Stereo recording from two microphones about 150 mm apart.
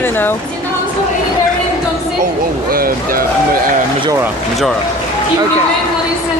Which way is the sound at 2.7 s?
75° right (ahead or behind).